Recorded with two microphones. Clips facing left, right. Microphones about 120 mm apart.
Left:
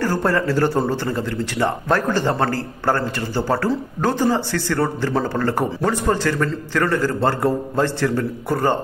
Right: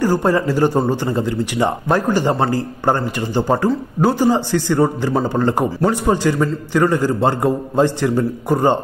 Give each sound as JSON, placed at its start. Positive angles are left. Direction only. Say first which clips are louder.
{"t": 0.0, "sound": "a man's voice", "louder": "right 4 dB", "side_deg": -15}